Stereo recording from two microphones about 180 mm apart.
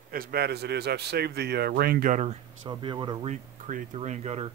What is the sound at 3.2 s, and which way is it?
Speech, 45° right (ahead or behind).